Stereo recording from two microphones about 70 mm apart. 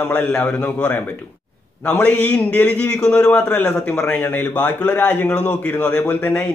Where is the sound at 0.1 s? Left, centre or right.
Centre.